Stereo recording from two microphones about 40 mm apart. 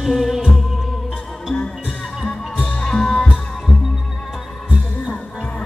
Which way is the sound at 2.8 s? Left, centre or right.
Centre.